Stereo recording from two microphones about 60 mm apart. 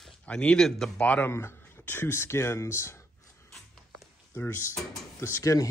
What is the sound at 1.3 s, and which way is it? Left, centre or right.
Speech, left.